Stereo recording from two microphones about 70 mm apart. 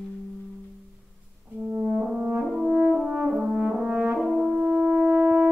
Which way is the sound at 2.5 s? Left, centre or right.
Centre.